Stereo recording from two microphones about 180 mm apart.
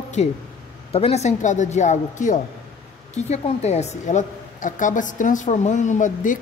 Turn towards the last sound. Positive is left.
turn(degrees=45)  # may be behind; listen again after turning